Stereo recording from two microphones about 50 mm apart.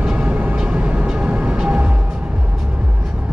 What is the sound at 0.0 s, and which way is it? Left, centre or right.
Vehicle, right.